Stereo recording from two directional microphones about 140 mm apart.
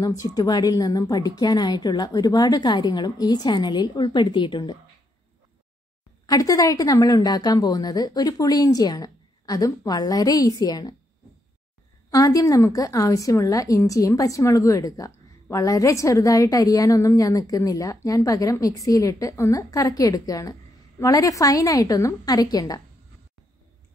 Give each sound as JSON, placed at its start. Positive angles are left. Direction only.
{"t": 0.0, "sound": "a woman's voice", "side_deg": 25}
{"t": 6.2, "sound": "a woman's voice", "side_deg": 25}
{"t": 12.1, "sound": "a woman's voice", "side_deg": 25}